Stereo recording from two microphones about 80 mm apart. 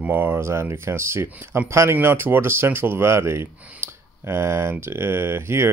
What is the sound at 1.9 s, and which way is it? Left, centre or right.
Speech, right.